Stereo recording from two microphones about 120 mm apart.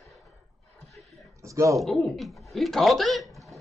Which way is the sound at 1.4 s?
25° right (ahead or behind).